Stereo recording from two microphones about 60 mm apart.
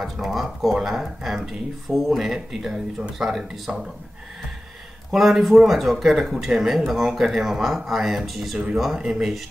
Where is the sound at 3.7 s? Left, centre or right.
Centre.